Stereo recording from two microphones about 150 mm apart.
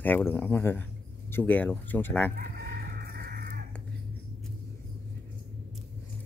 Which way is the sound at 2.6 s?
90° right.